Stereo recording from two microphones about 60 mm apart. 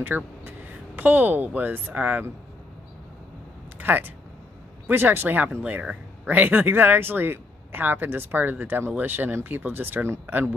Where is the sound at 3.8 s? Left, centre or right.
Right.